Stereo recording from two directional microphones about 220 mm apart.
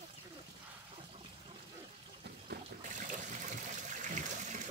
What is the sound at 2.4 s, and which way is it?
Water, 35° right (ahead or behind).